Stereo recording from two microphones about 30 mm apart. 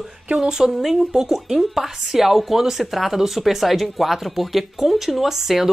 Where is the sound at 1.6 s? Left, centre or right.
Centre.